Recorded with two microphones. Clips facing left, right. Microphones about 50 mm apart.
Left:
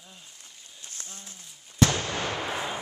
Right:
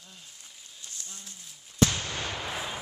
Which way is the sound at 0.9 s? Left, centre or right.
Left.